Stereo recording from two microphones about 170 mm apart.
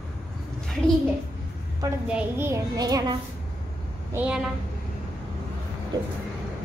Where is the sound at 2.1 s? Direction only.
15° right (ahead or behind).